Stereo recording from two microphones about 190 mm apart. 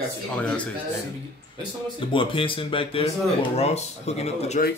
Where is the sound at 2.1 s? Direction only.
25° left (ahead or behind).